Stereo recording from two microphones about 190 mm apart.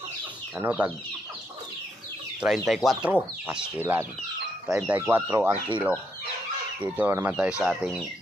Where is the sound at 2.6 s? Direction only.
Centre (ahead or behind).